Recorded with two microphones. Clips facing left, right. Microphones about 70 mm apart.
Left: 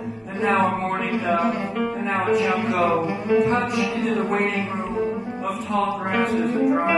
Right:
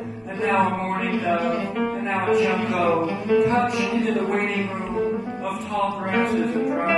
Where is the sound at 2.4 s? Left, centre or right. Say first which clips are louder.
Even; left.